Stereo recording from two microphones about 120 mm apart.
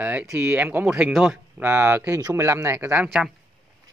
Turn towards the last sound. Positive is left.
turn(degrees=-15)  # may be behind; listen again after turning